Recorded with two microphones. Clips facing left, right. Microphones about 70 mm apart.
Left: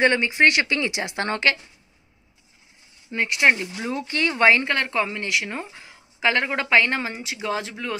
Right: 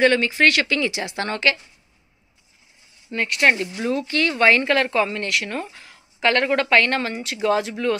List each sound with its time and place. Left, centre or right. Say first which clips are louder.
0.0 s speech: right 1 dB; left
3.1 s a woman's voice: right 1 dB; centre
4.1 s speech: left 1 dB; left
4.5 s a woman's voice: right 2 dB; centre